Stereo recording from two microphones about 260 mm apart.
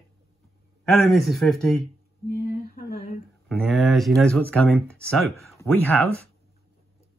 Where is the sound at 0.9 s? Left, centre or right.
Centre.